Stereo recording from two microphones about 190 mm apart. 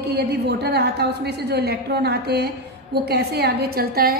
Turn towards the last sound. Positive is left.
turn(degrees=-50)  # may be behind; listen again after turning